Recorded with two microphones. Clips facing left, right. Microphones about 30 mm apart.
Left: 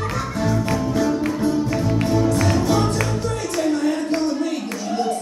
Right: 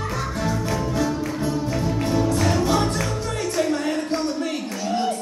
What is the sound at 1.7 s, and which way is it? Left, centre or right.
Music, centre.